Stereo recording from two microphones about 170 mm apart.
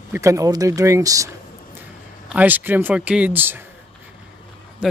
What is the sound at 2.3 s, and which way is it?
Speech, 10° right (ahead or behind).